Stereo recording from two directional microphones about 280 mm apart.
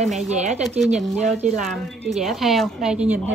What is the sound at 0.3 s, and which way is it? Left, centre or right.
Speech, right.